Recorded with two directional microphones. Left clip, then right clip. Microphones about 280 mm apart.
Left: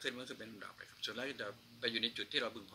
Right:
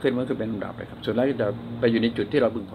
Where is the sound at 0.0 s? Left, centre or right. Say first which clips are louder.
Right 19 dB; left.